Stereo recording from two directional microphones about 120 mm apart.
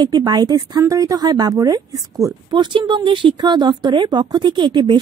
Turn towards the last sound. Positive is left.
turn(degrees=-40)  # may be behind; listen again after turning